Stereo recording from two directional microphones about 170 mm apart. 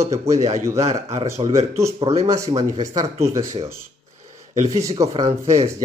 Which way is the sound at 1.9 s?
35° right (ahead or behind).